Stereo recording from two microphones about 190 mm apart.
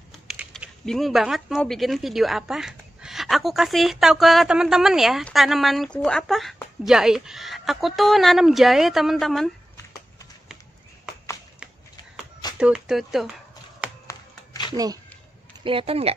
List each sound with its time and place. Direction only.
0.3 s speech: 5° right (ahead or behind)
12.5 s speech: 5° right (ahead or behind)
14.0 s a sound: 15° left (ahead or behind)
15.6 s speech: 30° right (ahead or behind)